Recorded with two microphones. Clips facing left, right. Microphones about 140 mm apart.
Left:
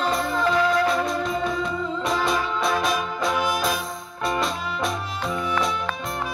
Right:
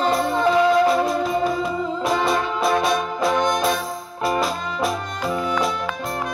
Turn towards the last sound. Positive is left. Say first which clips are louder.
# right 3 dB
turn(degrees=0)  # may be behind; listen again after turning